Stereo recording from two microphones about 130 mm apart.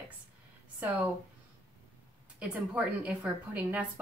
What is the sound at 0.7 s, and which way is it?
Speech, 20° right (ahead or behind).